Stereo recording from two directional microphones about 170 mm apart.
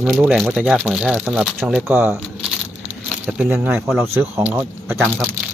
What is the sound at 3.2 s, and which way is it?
Speech, 5° right (ahead or behind).